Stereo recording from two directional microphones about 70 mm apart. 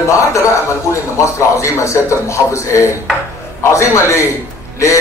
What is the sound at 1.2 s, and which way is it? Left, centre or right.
A man's voice, left.